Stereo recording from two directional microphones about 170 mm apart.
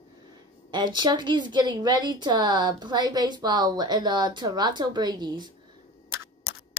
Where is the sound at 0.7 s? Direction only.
25° right (ahead or behind).